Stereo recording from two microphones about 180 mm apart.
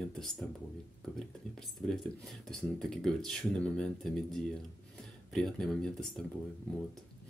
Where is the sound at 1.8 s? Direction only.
Centre (ahead or behind).